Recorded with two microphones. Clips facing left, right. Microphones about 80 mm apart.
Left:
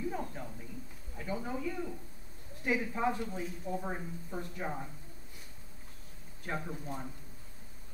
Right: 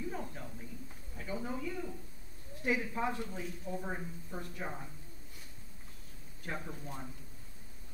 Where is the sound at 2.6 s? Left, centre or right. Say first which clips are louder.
Left 2 dB; centre.